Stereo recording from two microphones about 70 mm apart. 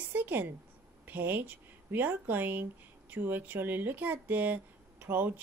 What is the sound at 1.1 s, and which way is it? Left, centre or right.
Speech, right.